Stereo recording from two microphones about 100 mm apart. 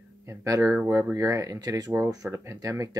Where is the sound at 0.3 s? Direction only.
30° right (ahead or behind).